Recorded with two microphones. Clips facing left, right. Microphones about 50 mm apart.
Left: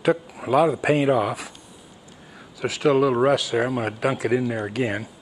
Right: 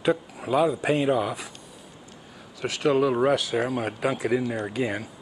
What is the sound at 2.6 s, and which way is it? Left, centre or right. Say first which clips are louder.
Speech: left 3 dB; centre.